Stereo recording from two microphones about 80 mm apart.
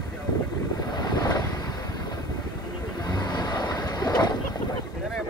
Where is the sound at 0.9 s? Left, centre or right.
Left.